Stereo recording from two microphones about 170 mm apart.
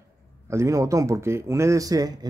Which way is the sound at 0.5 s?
15° right (ahead or behind).